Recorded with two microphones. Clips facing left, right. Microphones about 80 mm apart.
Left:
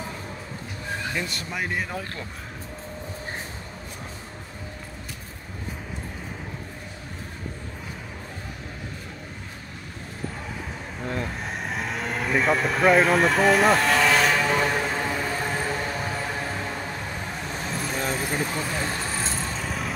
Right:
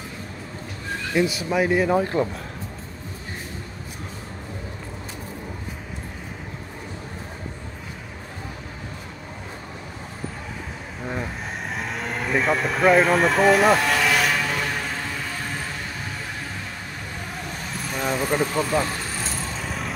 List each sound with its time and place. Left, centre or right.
1.1 s speech: centre
2.1 s speech: right
11.0 s vehicle: centre
15.4 s vehicle: left
17.9 s vehicle: centre
18.3 s speech: right
19.3 s vehicle: centre